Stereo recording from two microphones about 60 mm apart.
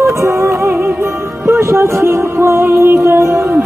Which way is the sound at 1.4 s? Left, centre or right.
Right.